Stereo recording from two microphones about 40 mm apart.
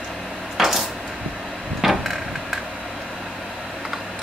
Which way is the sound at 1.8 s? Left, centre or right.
Centre.